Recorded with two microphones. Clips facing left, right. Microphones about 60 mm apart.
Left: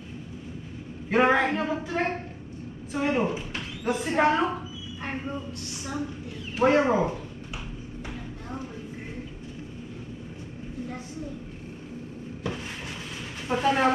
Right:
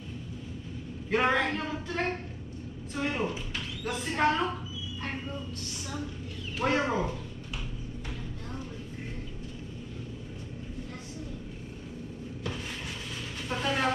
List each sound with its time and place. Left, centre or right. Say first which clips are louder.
1.1 s speech: left 5 dB; centre
5.0 s a sound: left 5 dB; left
6.5 s speech: left 7 dB; centre
8.1 s music: left 5 dB; centre
12.4 s a sound: left 3 dB; centre
13.5 s speech: left 6 dB; centre